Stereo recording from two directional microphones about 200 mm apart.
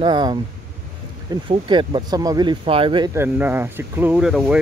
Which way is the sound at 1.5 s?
25° right (ahead or behind).